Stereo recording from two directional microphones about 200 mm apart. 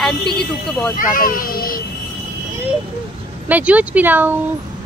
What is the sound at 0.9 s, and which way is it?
Speech, 40° left (ahead or behind).